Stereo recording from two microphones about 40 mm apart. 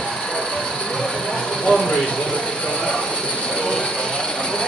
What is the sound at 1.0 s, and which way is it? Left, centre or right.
Vehicle, centre.